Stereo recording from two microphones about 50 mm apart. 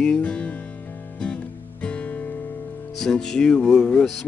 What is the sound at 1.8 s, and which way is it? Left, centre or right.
Music, left.